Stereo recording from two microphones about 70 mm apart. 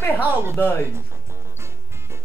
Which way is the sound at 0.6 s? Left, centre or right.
Left.